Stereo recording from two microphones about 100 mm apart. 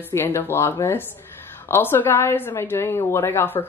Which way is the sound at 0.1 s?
25° left (ahead or behind).